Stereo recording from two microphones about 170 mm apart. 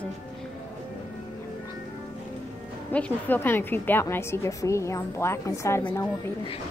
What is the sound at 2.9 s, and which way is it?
A woman's voice, 10° left (ahead or behind).